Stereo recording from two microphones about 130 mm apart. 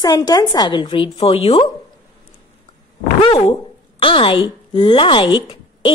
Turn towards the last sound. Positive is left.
turn(degrees=35)  # may be behind; listen again after turning